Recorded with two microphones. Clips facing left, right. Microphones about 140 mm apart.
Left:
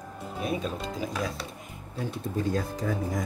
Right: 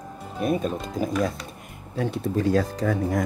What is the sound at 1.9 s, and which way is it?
Speech, 75° right (ahead or behind).